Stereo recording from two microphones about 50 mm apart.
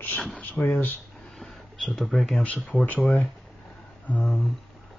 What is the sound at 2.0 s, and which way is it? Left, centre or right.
Speech, centre.